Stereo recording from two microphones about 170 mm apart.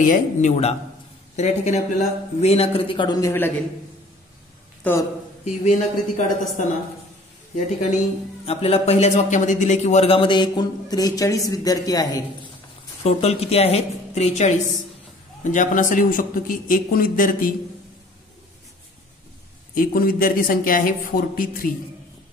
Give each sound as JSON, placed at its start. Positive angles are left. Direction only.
{"t": 0.0, "sound": "a man's voice", "side_deg": 45}
{"t": 5.7, "sound": "a man's voice", "side_deg": 50}
{"t": 7.5, "sound": "a man's voice", "side_deg": 45}
{"t": 13.0, "sound": "a man's voice", "side_deg": 35}
{"t": 19.7, "sound": "speech", "side_deg": 55}